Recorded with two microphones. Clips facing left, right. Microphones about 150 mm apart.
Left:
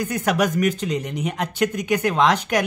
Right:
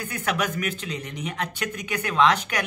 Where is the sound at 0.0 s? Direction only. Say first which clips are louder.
Left 6 dB; 40° left (ahead or behind).